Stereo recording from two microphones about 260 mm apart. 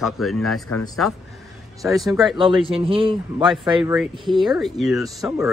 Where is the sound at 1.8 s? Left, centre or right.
Centre.